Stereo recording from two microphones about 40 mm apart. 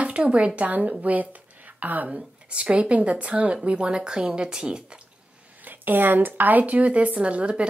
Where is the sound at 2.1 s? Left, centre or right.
Right.